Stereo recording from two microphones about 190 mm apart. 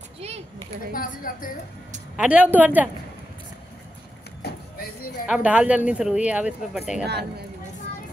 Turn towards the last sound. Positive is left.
turn(degrees=-5)  # may be behind; listen again after turning